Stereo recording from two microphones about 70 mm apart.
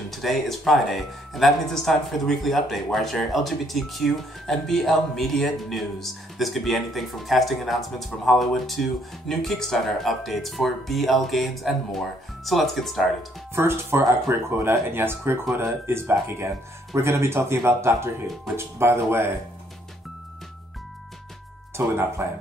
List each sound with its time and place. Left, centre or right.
0.1 s speech: centre
13.6 s speech: right
21.8 s speech: right